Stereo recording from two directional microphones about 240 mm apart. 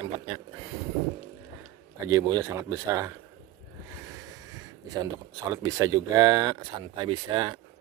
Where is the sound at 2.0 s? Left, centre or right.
Centre.